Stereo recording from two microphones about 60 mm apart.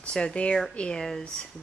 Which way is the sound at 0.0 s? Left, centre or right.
Centre.